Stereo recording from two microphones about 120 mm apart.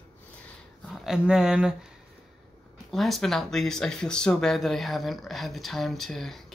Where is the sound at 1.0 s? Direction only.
5° right (ahead or behind).